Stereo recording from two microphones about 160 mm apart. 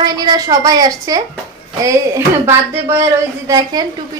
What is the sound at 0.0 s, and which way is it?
A woman's voice, 25° right (ahead or behind).